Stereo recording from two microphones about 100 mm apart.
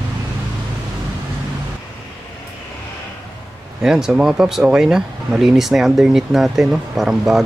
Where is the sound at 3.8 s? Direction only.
5° right (ahead or behind).